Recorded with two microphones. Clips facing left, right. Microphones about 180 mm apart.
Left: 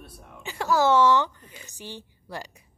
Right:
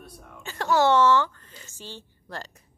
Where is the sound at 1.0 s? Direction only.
15° left (ahead or behind).